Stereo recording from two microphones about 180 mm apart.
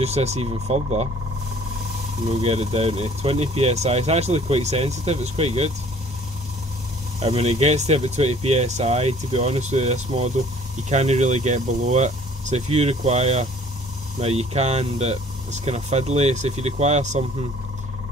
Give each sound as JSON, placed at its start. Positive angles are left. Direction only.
{"t": 0.0, "sound": "speech", "side_deg": -35}
{"t": 2.2, "sound": "speech", "side_deg": -35}
{"t": 7.2, "sound": "speech", "side_deg": -35}